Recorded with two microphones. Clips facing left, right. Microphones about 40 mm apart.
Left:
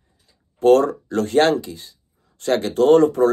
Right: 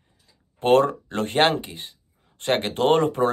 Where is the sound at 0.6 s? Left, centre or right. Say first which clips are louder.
Left 4 dB; right.